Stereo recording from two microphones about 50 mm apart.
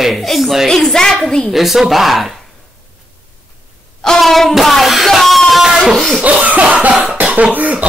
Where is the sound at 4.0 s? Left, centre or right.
Centre.